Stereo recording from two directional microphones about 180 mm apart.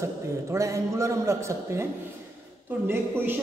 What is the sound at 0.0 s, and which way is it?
A man's voice, 15° right (ahead or behind).